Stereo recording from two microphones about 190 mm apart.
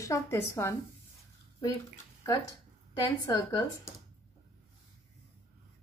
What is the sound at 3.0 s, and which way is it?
Speech, 15° left (ahead or behind).